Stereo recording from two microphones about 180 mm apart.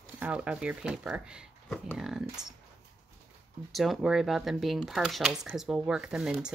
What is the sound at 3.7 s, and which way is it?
Speech, centre (ahead or behind).